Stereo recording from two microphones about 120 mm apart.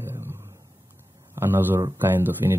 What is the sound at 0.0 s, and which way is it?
Roaring cats, 20° right (ahead or behind).